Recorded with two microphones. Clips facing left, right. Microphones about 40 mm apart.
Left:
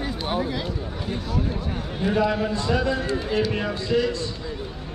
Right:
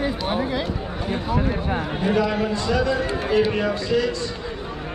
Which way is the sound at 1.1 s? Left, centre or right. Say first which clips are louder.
Right 5 dB; right.